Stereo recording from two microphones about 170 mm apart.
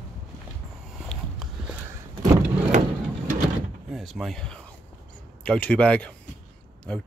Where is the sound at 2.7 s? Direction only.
50° right (ahead or behind).